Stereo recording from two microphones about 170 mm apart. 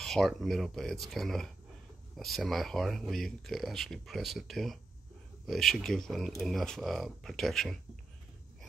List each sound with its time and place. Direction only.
0.0 s speech: centre (ahead or behind)